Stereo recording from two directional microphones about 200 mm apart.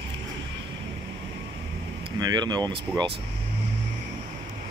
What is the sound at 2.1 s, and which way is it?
Speech, 20° right (ahead or behind).